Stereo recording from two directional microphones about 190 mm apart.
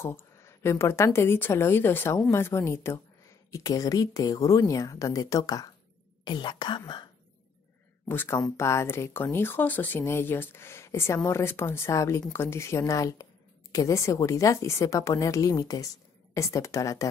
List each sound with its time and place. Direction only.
0.0 s a woman's voice: 15° left (ahead or behind)
8.0 s a woman's voice: 10° left (ahead or behind)